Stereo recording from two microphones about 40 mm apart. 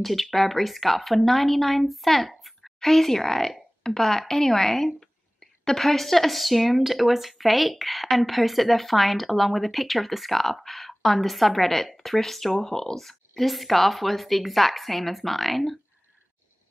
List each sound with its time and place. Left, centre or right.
0.0 s speech: centre